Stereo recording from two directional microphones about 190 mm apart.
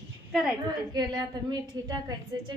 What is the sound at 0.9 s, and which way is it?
A woman's voice, 20° right (ahead or behind).